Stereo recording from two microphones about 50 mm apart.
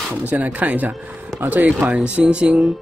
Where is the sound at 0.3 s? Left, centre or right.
Right.